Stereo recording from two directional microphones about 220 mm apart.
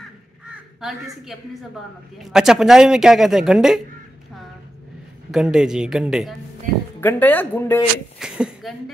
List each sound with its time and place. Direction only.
0.7 s speech: centre (ahead or behind)
5.3 s speech: centre (ahead or behind)
7.0 s speech: 10° left (ahead or behind)
8.2 s speech: 5° right (ahead or behind)